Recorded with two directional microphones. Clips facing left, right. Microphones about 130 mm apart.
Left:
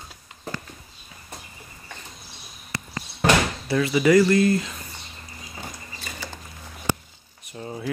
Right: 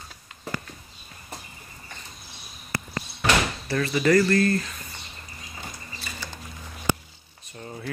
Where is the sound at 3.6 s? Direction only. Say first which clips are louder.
Left 3 dB; 15° left (ahead or behind).